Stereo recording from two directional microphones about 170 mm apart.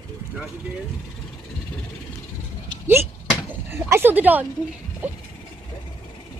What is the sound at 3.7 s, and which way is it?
Speech, 15° right (ahead or behind).